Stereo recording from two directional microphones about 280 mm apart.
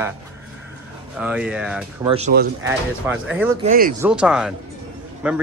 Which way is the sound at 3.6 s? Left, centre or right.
Right.